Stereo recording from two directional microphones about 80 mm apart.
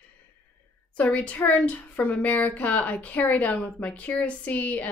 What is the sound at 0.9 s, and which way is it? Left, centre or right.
A woman's voice, centre.